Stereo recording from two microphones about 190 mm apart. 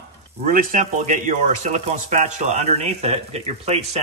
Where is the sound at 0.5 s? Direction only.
45° right (ahead or behind).